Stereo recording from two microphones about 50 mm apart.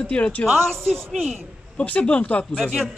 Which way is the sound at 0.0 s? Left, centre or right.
Left.